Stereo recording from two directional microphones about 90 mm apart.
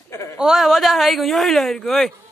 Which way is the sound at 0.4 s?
5° right (ahead or behind).